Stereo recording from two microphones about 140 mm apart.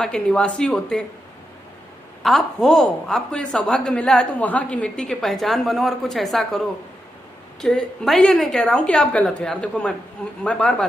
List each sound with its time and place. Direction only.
0.0 s a woman's voice: 5° left (ahead or behind)
2.2 s a woman's voice: centre (ahead or behind)
7.6 s a woman's voice: centre (ahead or behind)